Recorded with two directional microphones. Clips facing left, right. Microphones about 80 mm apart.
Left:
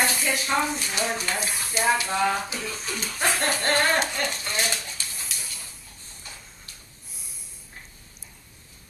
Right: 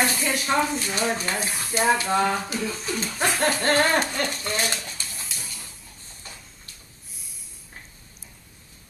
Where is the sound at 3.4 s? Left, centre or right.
Right.